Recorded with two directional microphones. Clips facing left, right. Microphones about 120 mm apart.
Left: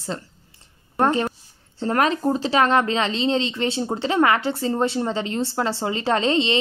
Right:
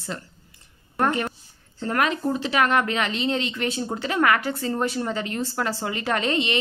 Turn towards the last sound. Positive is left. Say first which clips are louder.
# left 4 dB
turn(degrees=25)  # may be behind; listen again after turning